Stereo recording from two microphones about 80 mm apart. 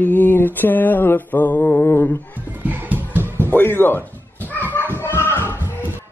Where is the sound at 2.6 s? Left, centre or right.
Right.